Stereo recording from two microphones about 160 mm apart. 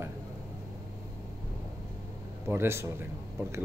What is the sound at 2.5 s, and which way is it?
Speech, 15° right (ahead or behind).